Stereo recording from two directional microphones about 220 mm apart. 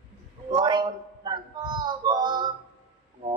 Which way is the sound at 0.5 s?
20° right (ahead or behind).